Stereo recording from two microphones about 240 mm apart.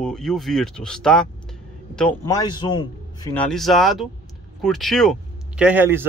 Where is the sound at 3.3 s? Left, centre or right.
Centre.